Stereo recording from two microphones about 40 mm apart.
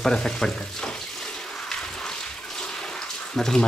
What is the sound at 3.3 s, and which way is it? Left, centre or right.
Speech, centre.